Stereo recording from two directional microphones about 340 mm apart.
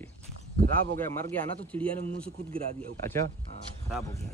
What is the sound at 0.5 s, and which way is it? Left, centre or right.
Speech, right.